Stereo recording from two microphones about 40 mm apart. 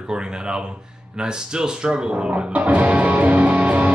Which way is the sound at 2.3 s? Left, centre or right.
Right.